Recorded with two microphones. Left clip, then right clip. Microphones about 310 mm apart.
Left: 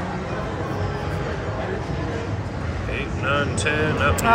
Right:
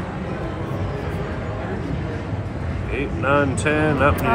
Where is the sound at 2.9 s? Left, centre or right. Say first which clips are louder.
Right 4 dB; centre.